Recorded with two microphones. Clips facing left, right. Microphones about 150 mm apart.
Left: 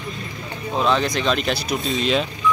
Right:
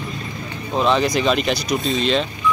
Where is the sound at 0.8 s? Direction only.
Centre (ahead or behind).